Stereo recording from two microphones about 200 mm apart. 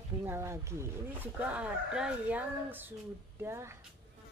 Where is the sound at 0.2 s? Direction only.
10° right (ahead or behind).